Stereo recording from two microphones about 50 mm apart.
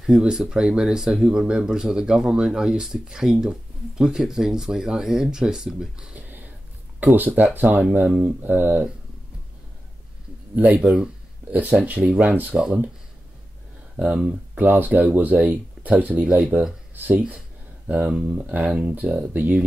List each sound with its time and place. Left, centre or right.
0.1 s speech: centre
6.1 s a sound: right
7.0 s speech: right
10.5 s speech: right
10.8 s speech: centre
11.5 s speech: right
13.9 s speech: right